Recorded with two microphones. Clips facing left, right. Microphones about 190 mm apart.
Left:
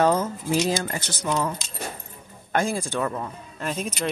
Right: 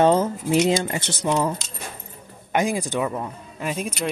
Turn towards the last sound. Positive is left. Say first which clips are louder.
# right 2 dB
turn(degrees=-5)  # may be behind; listen again after turning